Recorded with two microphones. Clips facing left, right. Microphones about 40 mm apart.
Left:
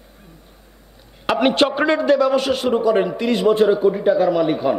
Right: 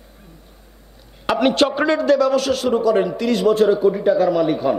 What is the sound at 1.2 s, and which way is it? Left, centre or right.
A man's voice, centre.